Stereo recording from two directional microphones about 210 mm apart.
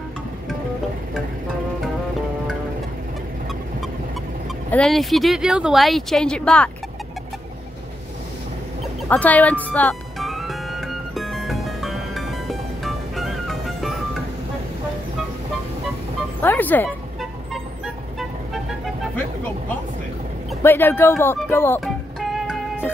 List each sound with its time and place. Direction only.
4.6 s speech: 5° left (ahead or behind)
9.1 s music: 5° left (ahead or behind)
16.3 s music: 10° left (ahead or behind)
20.6 s speech: 10° left (ahead or behind)
22.2 s music: centre (ahead or behind)